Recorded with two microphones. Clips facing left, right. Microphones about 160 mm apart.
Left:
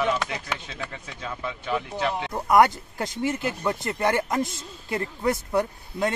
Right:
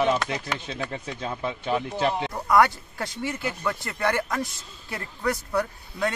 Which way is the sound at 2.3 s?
20° left (ahead or behind).